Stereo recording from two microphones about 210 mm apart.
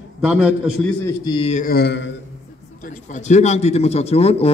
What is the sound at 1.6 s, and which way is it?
Mantra, 50° left (ahead or behind).